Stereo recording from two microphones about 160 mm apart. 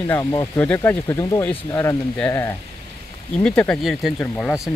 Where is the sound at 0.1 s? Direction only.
20° left (ahead or behind); by 4.6 s 5° left (ahead or behind).